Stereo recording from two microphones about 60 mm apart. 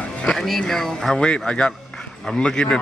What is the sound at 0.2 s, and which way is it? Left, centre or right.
Speech, centre.